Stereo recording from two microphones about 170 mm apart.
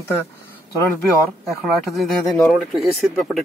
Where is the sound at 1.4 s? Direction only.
Centre (ahead or behind).